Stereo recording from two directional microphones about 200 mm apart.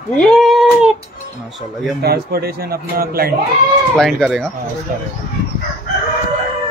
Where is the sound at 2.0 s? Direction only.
50° right (ahead or behind).